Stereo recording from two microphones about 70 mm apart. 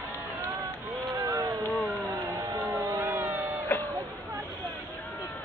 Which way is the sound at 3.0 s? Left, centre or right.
Right.